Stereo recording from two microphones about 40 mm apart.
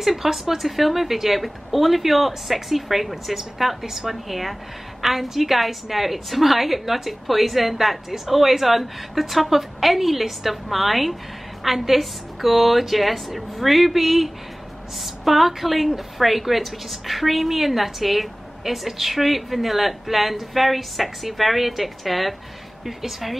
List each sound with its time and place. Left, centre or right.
0.0 s a woman's voice: centre